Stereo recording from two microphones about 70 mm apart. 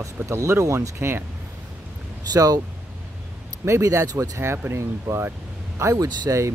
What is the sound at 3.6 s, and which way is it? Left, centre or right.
Speech, right.